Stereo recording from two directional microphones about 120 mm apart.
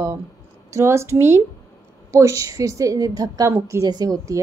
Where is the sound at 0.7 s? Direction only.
20° right (ahead or behind).